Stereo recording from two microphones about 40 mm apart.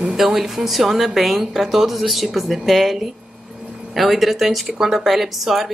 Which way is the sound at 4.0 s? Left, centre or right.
Centre.